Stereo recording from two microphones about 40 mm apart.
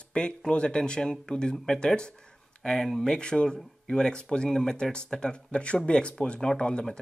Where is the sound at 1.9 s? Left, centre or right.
Left.